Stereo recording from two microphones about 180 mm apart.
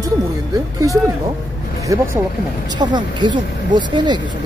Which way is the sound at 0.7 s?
20° right (ahead or behind).